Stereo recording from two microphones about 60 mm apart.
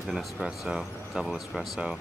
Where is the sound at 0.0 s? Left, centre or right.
Centre.